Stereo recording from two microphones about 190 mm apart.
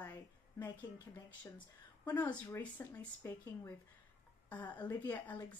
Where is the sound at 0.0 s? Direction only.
10° left (ahead or behind).